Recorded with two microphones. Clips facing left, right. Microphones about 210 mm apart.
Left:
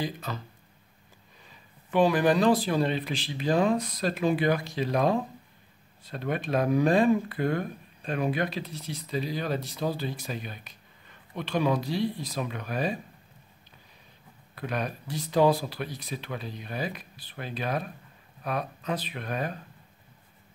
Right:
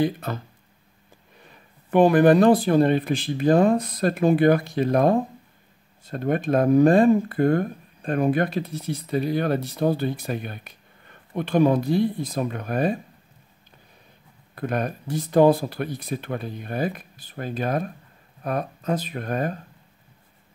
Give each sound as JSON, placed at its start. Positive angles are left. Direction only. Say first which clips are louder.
{"t": 0.0, "sound": "speech", "louder": "right 9 dB", "side_deg": -60}
{"t": 1.4, "sound": "speech", "louder": "right 3 dB", "side_deg": -55}
{"t": 14.5, "sound": "speech", "louder": "right 6 dB", "side_deg": -50}